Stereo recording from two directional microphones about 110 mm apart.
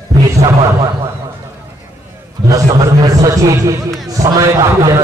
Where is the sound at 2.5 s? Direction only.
30° right (ahead or behind).